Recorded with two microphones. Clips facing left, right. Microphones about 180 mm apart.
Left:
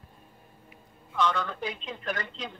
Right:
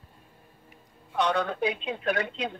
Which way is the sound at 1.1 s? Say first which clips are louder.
Right 2 dB; 60° right (ahead or behind).